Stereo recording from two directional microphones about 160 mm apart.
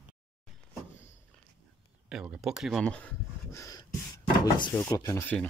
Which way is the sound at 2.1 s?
5° right (ahead or behind).